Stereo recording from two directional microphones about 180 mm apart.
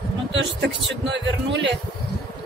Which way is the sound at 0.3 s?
80° right.